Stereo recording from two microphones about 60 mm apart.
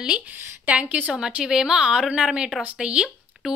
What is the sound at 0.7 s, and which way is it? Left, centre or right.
Speech, right.